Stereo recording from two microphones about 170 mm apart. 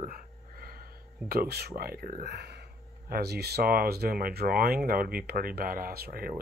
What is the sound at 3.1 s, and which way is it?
Speech, 70° right (ahead or behind).